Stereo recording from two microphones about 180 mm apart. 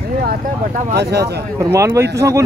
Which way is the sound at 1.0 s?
65° right (ahead or behind).